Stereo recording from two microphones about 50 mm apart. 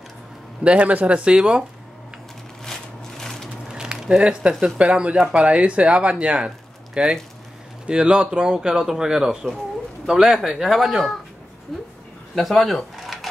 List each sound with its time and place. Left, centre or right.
0.7 s speech: right
2.6 s a sound: centre
3.6 s speech: centre
11.7 s speech: centre